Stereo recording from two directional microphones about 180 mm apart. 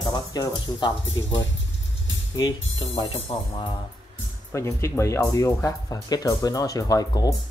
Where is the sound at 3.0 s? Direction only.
30° left (ahead or behind).